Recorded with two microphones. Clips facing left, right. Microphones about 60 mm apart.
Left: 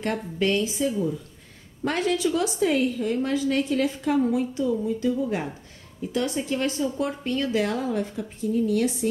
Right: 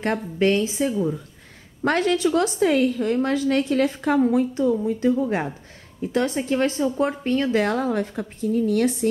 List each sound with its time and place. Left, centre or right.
0.0 s speech: right
1.9 s a woman's voice: right
7.5 s a woman's voice: right